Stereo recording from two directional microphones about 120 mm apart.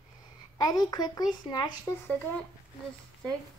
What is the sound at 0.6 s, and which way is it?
Speech, 30° left (ahead or behind).